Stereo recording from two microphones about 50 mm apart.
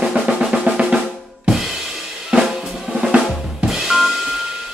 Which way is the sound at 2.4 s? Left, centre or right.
Centre.